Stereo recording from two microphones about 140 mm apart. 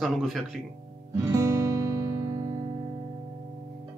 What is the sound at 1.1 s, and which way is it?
Guitar, 20° right (ahead or behind).